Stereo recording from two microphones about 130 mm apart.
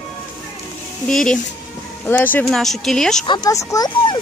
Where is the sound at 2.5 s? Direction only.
Centre (ahead or behind).